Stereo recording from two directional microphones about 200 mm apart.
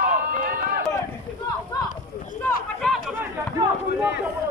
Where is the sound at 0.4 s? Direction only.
45° right (ahead or behind).